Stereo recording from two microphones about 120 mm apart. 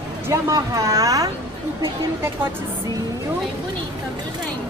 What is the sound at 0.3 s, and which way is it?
A woman's voice, 30° right (ahead or behind).